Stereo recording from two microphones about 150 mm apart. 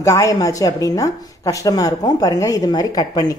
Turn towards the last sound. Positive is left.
turn(degrees=25)  # may be behind; listen again after turning